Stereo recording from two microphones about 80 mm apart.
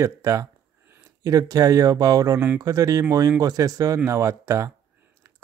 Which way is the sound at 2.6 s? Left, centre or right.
Right.